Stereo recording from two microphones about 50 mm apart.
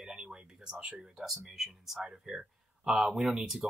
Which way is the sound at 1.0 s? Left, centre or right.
Centre.